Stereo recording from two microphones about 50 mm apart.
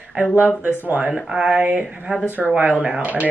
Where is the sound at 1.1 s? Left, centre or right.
Centre.